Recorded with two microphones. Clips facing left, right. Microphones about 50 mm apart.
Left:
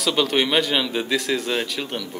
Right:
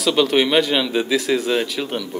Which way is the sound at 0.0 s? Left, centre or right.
Centre.